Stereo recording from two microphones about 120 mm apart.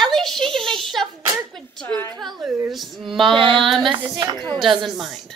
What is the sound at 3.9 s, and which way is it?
Speech, 40° right (ahead or behind).